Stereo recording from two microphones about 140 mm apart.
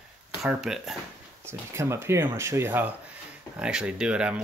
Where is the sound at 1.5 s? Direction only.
20° right (ahead or behind).